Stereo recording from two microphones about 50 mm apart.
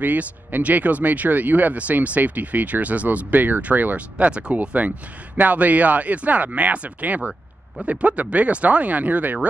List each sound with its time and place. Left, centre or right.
0.0 s speech: right